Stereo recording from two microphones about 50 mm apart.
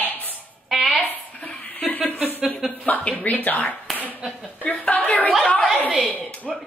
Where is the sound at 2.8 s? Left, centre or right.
Left.